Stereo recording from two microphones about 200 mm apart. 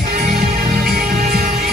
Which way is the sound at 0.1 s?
50° right (ahead or behind).